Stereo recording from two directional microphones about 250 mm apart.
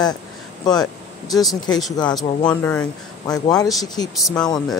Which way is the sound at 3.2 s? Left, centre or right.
Centre.